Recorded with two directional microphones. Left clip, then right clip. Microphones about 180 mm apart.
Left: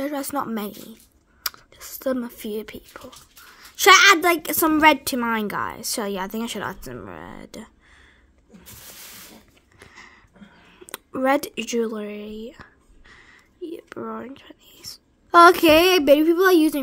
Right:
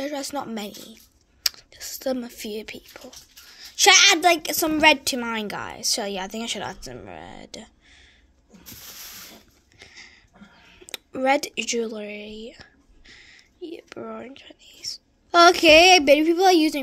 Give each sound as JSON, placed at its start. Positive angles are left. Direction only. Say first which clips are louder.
{"t": 0.0, "sound": "a woman's voice", "louder": "left 3 dB", "side_deg": 35}
{"t": 9.8, "sound": "a sound", "louder": "even", "side_deg": 30}
{"t": 10.7, "sound": "speech", "louder": "left 1 dB", "side_deg": 30}